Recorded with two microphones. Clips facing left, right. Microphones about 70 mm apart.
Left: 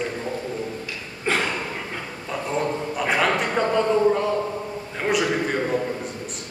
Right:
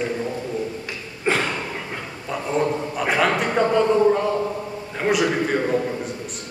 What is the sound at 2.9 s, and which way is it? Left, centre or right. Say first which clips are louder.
A man's voice: right 1 dB; centre.